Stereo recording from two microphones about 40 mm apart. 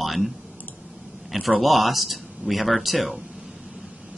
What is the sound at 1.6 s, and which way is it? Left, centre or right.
Speech, centre.